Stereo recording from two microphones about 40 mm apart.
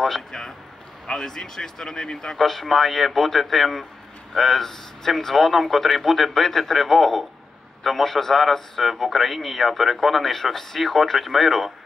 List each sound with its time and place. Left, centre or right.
0.0 s speech: centre
2.3 s a man's voice: centre